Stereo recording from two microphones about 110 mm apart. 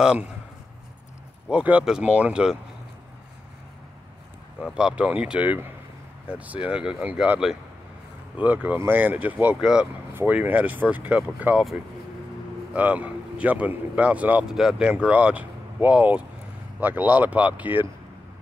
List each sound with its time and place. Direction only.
0.0 s speech: 10° right (ahead or behind)
1.5 s speech: 10° right (ahead or behind)
4.7 s speech: 10° right (ahead or behind)
8.4 s speech: 15° right (ahead or behind)
10.1 s speech: 15° right (ahead or behind)
12.7 s speech: 15° right (ahead or behind)